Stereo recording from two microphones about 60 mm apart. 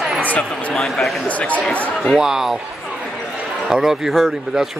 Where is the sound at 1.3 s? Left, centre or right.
Left.